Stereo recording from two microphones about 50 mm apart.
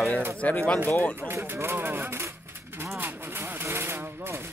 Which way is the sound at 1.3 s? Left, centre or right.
Right.